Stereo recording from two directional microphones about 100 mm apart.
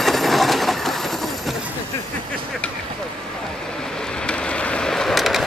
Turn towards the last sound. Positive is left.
turn(degrees=0)  # may be behind; listen again after turning